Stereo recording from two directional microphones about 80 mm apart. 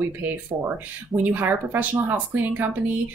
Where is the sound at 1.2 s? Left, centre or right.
Right.